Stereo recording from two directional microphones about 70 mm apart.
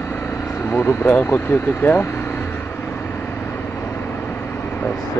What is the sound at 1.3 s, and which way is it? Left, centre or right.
Speech, left.